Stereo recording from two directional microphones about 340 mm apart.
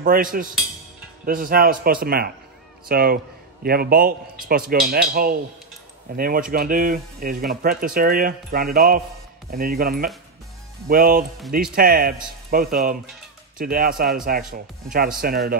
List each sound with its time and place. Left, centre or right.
0.0 s speech: right